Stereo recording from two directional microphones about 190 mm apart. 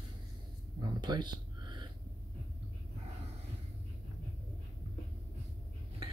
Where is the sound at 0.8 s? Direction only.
20° right (ahead or behind).